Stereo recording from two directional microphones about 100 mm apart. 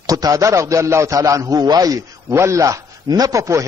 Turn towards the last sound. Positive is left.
turn(degrees=-30)  # may be behind; listen again after turning